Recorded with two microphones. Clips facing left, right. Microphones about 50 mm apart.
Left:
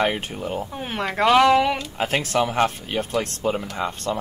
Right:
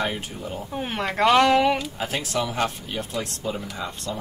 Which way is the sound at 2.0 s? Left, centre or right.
Left.